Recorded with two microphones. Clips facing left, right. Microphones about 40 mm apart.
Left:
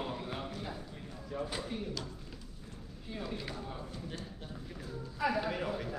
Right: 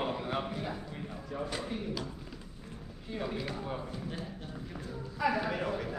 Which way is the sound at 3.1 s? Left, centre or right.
Centre.